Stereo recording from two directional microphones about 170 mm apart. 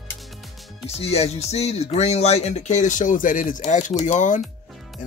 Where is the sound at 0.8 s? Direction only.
40° left (ahead or behind).